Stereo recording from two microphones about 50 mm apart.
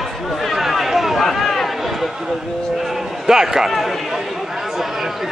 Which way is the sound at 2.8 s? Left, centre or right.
Centre.